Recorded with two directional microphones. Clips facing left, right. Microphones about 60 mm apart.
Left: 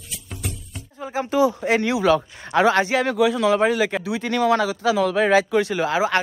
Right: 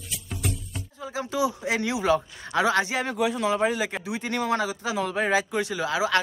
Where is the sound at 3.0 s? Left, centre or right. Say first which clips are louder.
Left 6 dB; left.